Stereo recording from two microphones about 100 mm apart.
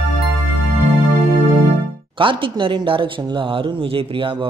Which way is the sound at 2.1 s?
60° right (ahead or behind).